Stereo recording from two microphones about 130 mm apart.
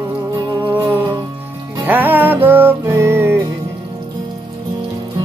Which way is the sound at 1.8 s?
15° right (ahead or behind).